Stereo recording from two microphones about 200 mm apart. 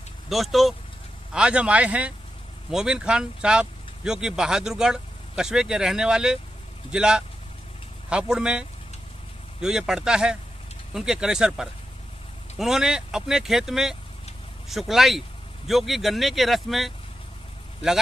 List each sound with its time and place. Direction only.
0.3 s speech: centre (ahead or behind)